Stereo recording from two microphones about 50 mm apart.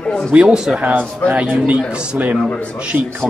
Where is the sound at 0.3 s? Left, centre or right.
Right.